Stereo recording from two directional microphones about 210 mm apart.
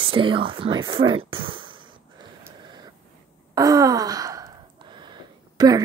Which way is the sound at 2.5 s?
20° right (ahead or behind).